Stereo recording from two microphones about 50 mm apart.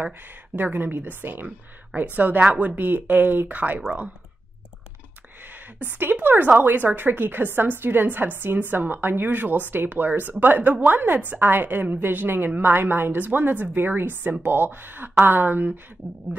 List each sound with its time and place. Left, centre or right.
0.6 s a woman's voice: right
5.5 s a woman's voice: right